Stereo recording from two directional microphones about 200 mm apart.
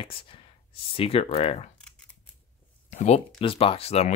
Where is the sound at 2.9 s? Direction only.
35° left (ahead or behind).